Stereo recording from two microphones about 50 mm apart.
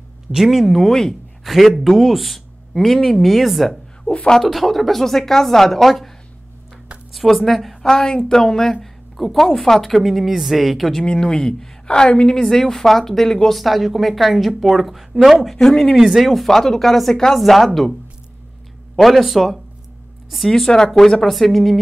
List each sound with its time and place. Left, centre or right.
0.3 s speech: centre
4.0 s speech: centre
4.4 s speech: centre
11.0 s speech: centre
13.6 s speech: centre
15.4 s speech: centre
16.0 s speech: centre
18.9 s speech: centre